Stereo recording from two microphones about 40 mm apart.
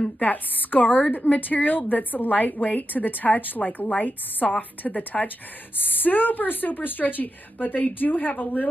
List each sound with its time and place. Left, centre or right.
0.2 s speech: left